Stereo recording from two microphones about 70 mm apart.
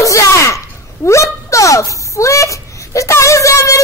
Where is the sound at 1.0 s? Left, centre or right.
Left.